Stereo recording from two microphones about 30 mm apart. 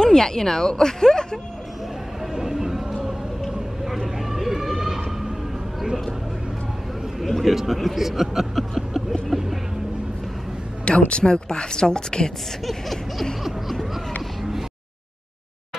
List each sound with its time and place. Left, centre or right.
0.0 s speech: centre
2.3 s a sound: centre
4.3 s vehicle: centre
7.2 s a man's voice: centre
9.3 s vehicle: centre
11.1 s speech: left
12.6 s a sound: centre